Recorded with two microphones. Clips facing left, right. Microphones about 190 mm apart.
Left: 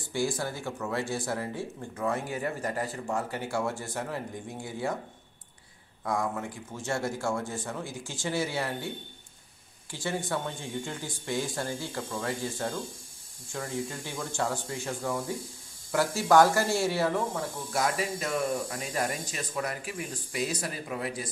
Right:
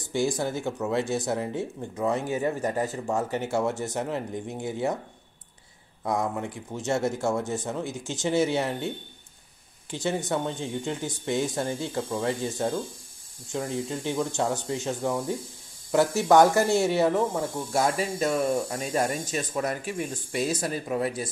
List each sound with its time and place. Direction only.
0.1 s speech: 20° right (ahead or behind)
6.0 s speech: 20° right (ahead or behind)